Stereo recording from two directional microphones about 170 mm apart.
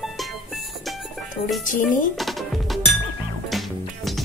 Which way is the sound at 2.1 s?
Centre (ahead or behind).